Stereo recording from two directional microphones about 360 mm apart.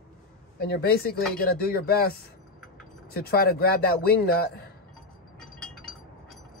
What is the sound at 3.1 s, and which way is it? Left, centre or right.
Speech, left.